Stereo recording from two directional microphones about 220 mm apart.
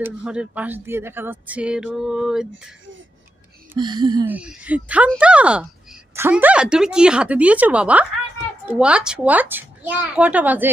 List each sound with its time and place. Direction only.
0.0 s speech: 5° right (ahead or behind)
3.7 s speech: 20° right (ahead or behind)
4.3 s speech: 5° right (ahead or behind)